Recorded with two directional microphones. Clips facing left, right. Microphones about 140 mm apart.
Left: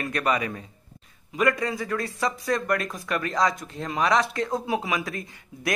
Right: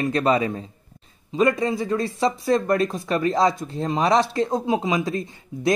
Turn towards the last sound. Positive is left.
turn(degrees=-25)  # may be behind; listen again after turning